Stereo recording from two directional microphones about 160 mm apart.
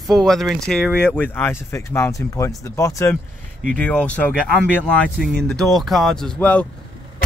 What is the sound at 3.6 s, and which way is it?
Speech, 5° left (ahead or behind).